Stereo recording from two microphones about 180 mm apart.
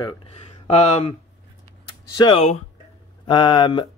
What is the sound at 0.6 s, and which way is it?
Speech, 35° left (ahead or behind).